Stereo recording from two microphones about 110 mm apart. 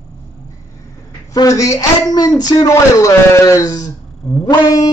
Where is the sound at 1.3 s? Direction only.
30° left (ahead or behind).